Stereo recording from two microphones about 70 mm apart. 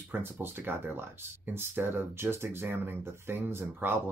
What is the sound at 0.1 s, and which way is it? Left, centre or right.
Speech, right.